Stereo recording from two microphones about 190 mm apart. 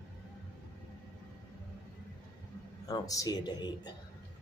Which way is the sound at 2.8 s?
20° left (ahead or behind).